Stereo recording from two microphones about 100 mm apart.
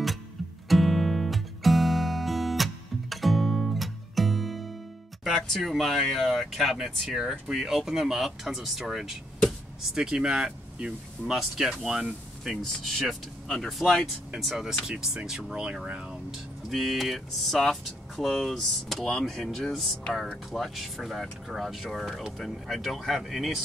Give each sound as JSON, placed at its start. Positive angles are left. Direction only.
{"t": 0.7, "sound": "music", "side_deg": 0}
{"t": 5.2, "sound": "speech", "side_deg": 0}